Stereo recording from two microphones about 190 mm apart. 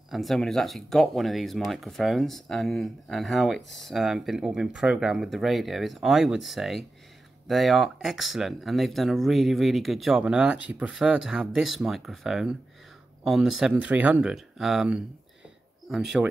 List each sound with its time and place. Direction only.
0.1 s speech: centre (ahead or behind)